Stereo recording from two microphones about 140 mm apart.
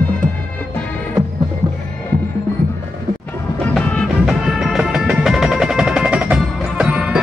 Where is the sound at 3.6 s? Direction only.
10° left (ahead or behind).